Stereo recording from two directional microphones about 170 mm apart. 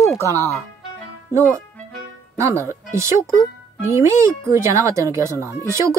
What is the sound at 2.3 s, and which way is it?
Speech, 15° right (ahead or behind).